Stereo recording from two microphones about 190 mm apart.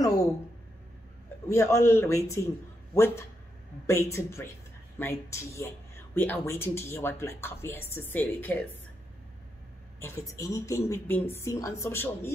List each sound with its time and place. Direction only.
0.0 s a sound: 15° left (ahead or behind)
1.5 s speech: 15° left (ahead or behind)
9.9 s speech: 15° left (ahead or behind)